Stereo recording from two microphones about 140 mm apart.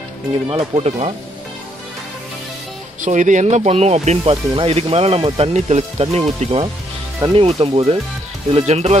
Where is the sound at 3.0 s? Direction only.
65° right (ahead or behind).